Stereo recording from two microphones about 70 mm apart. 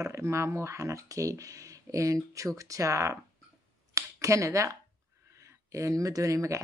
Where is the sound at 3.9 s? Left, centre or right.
Right.